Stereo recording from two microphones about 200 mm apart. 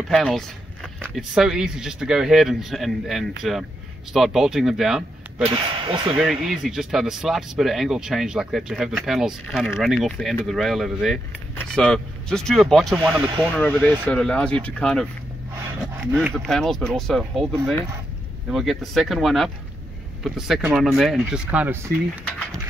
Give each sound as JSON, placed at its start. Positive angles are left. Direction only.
{"t": 0.1, "sound": "speech", "side_deg": 0}
{"t": 5.4, "sound": "speech", "side_deg": -25}
{"t": 6.4, "sound": "speech", "side_deg": 0}
{"t": 15.8, "sound": "a sound", "side_deg": 0}
{"t": 16.3, "sound": "speech", "side_deg": 0}